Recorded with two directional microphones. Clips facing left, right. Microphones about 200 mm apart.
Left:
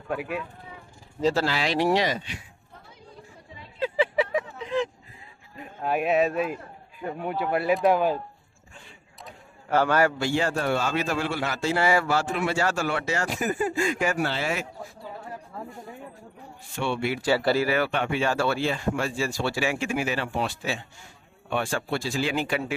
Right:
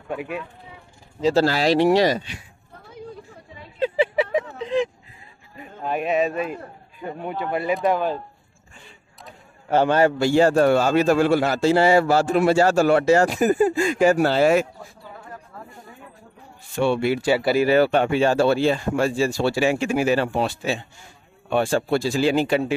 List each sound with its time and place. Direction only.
0.1 s a man's voice: centre (ahead or behind)
1.3 s a man's voice: 40° right (ahead or behind)
3.8 s vehicle: 20° right (ahead or behind)
5.6 s a man's voice: 5° left (ahead or behind)
9.7 s a man's voice: 25° right (ahead or behind)
10.2 s a man's voice: 40° right (ahead or behind)
16.8 s a man's voice: 35° right (ahead or behind)
17.2 s speech: 15° right (ahead or behind)
17.6 s a man's voice: 30° right (ahead or behind)